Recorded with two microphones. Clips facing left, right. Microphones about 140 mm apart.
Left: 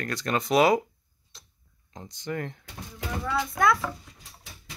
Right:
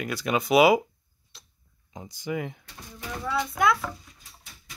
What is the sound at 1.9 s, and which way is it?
Speech, 5° right (ahead or behind).